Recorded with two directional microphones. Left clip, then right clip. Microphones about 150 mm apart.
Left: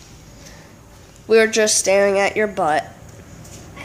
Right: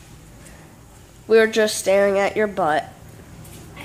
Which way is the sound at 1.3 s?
Centre (ahead or behind).